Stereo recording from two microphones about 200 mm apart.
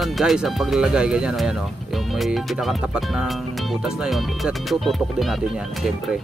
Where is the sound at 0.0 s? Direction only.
Centre (ahead or behind).